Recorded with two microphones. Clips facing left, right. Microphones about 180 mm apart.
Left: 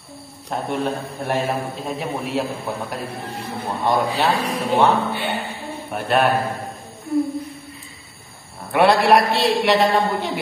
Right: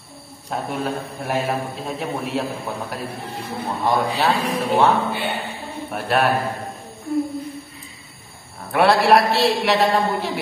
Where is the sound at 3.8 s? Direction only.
Centre (ahead or behind).